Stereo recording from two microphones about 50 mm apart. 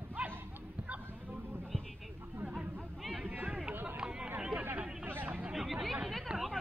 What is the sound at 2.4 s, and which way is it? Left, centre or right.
Chatter, centre.